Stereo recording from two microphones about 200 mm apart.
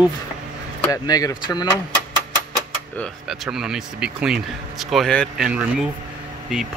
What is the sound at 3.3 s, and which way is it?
Speech, 5° right (ahead or behind).